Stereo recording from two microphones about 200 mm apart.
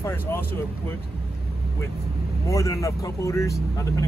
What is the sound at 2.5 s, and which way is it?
Speech, 15° left (ahead or behind).